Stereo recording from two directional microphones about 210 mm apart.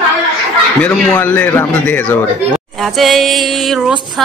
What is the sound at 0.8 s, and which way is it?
A man's voice, 5° left (ahead or behind).